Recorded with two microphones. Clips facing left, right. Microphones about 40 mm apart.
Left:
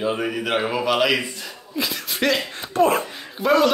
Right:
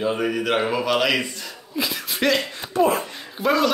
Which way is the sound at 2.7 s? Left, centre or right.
Left.